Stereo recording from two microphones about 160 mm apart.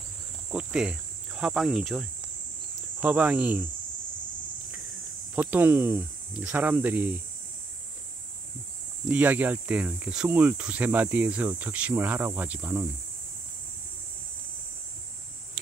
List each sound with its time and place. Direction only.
0.5 s speech: 5° right (ahead or behind)
5.3 s speech: 10° right (ahead or behind)
9.0 s speech: 10° right (ahead or behind)